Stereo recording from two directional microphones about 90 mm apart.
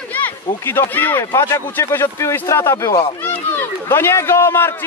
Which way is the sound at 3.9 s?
30° left (ahead or behind).